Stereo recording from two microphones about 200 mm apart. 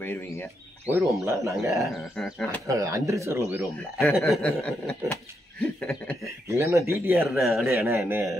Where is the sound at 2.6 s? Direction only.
15° right (ahead or behind).